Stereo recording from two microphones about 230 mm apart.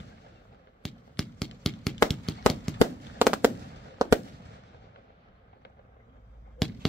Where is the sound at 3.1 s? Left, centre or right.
Centre.